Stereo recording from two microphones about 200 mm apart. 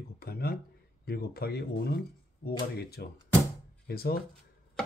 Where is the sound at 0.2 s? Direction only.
50° left (ahead or behind).